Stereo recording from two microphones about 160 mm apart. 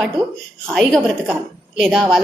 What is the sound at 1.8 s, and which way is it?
Speech, 5° left (ahead or behind).